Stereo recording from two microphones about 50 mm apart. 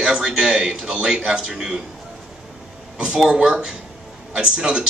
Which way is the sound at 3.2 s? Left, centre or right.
Centre.